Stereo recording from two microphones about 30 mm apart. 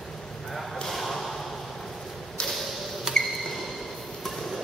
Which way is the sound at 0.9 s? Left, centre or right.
Centre.